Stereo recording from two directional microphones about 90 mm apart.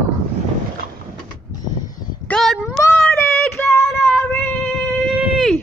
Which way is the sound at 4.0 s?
Centre (ahead or behind).